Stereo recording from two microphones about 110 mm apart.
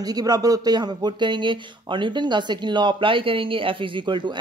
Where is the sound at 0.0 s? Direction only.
35° right (ahead or behind).